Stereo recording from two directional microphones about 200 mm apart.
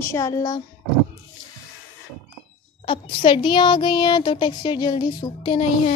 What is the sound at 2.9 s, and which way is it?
Speech, 25° left (ahead or behind).